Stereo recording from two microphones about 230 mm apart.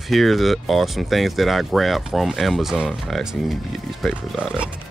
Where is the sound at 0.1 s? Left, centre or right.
Centre.